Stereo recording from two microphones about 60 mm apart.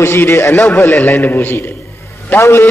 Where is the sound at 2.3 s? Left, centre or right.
Left.